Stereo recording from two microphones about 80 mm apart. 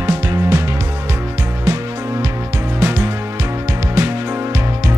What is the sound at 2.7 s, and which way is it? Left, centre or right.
Music, right.